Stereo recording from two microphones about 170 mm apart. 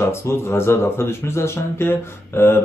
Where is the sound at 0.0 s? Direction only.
15° left (ahead or behind).